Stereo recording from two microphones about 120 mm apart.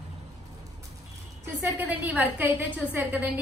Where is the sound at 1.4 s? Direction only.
15° right (ahead or behind).